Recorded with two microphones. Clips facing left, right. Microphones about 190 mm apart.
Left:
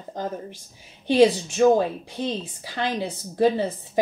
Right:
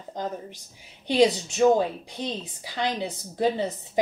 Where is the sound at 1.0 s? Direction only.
15° right (ahead or behind).